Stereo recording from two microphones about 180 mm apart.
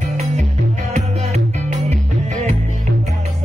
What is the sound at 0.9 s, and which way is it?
Music, 40° right (ahead or behind).